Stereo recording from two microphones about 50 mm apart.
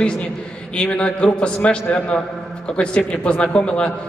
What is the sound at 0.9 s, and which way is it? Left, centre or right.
A man's voice, left.